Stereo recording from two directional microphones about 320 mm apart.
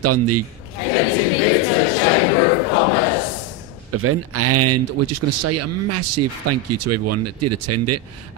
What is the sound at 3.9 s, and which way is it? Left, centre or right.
A man's voice, right.